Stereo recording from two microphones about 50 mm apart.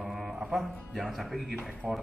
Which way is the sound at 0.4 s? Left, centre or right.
Centre.